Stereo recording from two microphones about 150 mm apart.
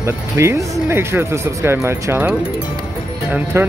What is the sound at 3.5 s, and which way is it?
Speech, 15° right (ahead or behind).